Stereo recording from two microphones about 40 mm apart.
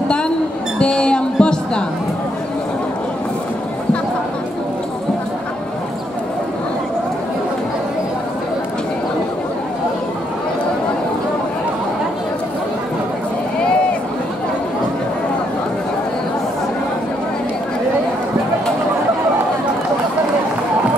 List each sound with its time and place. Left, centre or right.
0.7 s music: left